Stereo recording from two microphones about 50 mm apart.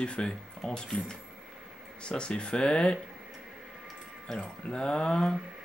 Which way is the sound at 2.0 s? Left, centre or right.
Centre.